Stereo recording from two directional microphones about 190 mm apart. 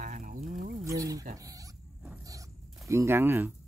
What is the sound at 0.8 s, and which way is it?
Speech, 15° right (ahead or behind).